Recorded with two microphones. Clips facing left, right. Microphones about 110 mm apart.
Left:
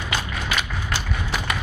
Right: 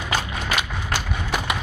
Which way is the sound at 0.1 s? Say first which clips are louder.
Right 2 dB; 45° right (ahead or behind).